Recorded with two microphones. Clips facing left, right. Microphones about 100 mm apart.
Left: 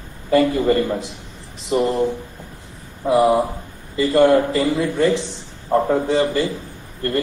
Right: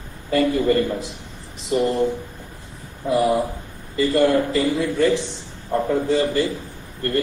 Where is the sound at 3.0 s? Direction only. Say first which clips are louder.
Left 4 dB; 30° left (ahead or behind).